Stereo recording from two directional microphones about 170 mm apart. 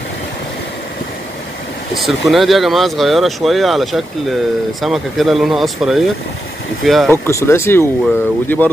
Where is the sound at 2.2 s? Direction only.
Centre (ahead or behind).